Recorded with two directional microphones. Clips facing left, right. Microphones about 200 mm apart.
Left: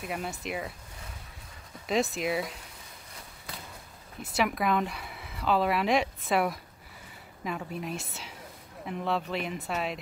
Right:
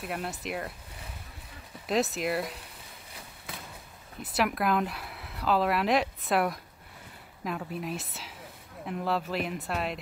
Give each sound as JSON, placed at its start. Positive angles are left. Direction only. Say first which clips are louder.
{"t": 0.0, "sound": "speech", "louder": "even", "side_deg": 0}
{"t": 1.9, "sound": "speech", "louder": "even", "side_deg": 0}
{"t": 4.2, "sound": "speech", "louder": "even", "side_deg": 0}